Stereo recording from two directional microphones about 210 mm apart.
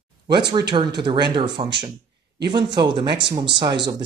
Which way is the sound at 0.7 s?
20° right (ahead or behind).